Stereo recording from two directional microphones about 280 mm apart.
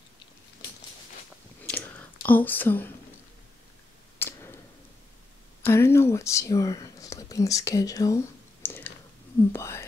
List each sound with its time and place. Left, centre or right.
1.7 s whispering: centre
4.2 s tick: centre
5.6 s speech: centre
8.6 s chewing: centre
9.5 s speech: centre